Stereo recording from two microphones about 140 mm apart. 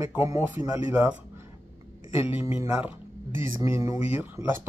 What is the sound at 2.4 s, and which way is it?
Speech, 15° right (ahead or behind).